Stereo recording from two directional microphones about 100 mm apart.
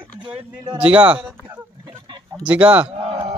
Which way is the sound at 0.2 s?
65° right (ahead or behind).